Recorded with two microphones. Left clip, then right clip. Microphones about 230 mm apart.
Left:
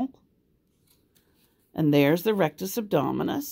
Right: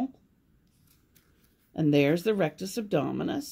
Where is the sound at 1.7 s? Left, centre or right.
Left.